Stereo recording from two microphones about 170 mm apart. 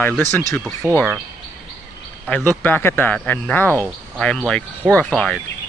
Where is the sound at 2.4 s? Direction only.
10° left (ahead or behind).